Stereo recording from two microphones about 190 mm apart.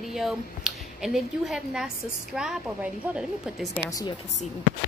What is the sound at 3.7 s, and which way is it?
Speech, 15° left (ahead or behind).